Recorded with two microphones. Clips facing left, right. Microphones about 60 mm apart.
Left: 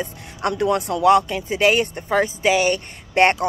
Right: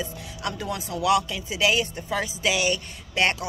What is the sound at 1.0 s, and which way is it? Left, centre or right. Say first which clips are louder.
Speech: left 6 dB; left.